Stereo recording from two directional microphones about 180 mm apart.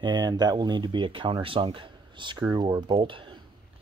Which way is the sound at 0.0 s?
25° right (ahead or behind).